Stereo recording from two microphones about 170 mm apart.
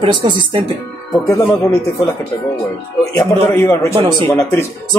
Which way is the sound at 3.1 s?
15° left (ahead or behind).